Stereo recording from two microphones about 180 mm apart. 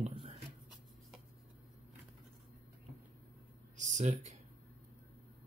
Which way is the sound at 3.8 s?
40° right (ahead or behind).